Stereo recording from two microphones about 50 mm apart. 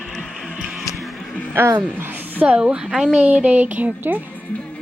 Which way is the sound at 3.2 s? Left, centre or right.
Right.